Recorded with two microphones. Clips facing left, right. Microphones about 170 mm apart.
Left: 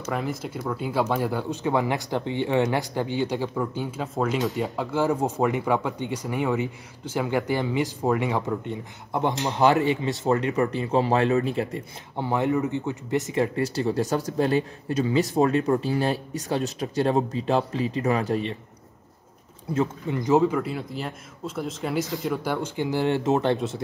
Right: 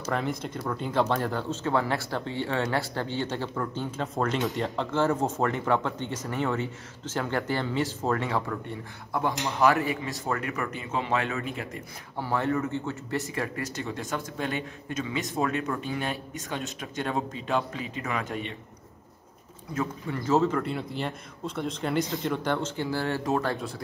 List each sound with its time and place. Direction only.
0.1 s speech: 5° left (ahead or behind); by 12.3 s 30° left (ahead or behind)
12.3 s speech: 15° left (ahead or behind); by 18.6 s 35° left (ahead or behind)
19.7 s speech: 20° left (ahead or behind)